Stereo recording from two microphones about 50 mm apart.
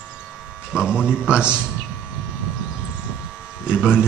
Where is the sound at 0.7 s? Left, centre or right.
Centre.